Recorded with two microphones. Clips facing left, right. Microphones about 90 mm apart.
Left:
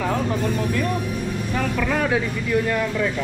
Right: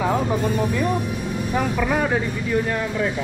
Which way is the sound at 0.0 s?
15° right (ahead or behind).